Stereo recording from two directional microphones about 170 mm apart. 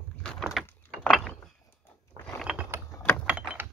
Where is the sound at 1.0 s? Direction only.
Centre (ahead or behind).